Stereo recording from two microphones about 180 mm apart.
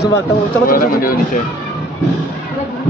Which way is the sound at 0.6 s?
55° left (ahead or behind).